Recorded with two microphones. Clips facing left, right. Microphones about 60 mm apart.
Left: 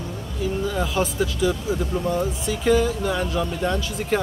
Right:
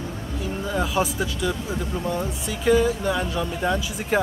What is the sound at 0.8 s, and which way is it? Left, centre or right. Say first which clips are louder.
Speech: right 1 dB; centre.